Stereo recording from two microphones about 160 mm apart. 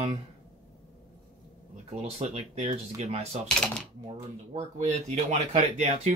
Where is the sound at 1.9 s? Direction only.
40° right (ahead or behind).